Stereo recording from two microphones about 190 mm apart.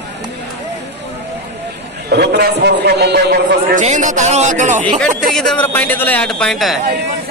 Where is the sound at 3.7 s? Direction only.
40° right (ahead or behind).